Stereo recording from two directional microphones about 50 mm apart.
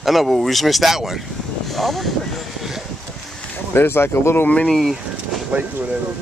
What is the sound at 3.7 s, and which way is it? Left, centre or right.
Speech, left.